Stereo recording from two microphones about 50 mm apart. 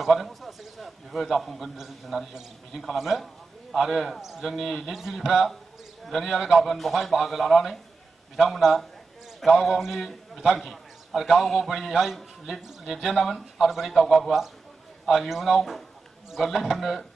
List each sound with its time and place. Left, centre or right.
0.0 s a man's voice: centre